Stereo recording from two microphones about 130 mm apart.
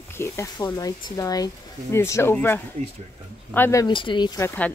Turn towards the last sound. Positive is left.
turn(degrees=15)  # may be behind; listen again after turning